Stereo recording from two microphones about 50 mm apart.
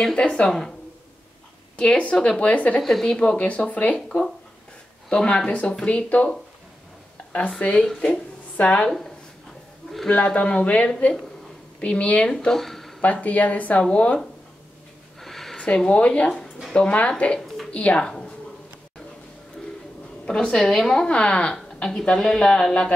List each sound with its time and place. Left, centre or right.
0.0 s speech: centre
1.8 s speech: left
2.8 s speech: centre
3.2 s speech: left
5.1 s speech: centre
7.6 s a woman's voice: left
8.8 s speech: centre
10.0 s speech: left
12.5 s speech: centre
13.0 s a woman's voice: left
15.1 s a sound: centre
15.5 s a woman's voice: centre
20.2 s a woman's voice: centre